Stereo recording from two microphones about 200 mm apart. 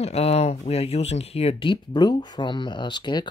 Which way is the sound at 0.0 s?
30° left (ahead or behind).